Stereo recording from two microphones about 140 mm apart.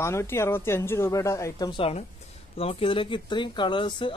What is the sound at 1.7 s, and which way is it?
Speech, 40° left (ahead or behind).